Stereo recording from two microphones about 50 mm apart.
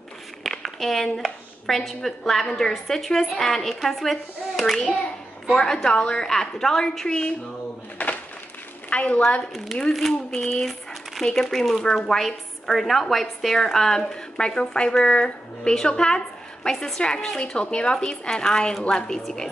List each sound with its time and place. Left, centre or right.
0.4 s a woman's voice: centre
5.6 s a woman's voice: centre
8.0 s a sound: left
8.9 s a woman's voice: left
10.3 s a woman's voice: centre